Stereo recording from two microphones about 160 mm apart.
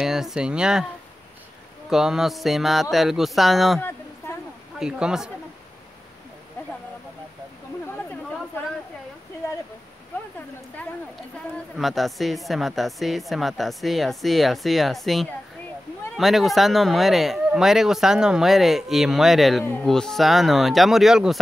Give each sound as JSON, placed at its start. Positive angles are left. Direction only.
{"t": 0.0, "sound": "speech", "side_deg": -5}
{"t": 1.9, "sound": "a woman's voice", "side_deg": -5}
{"t": 11.5, "sound": "a woman's voice", "side_deg": 0}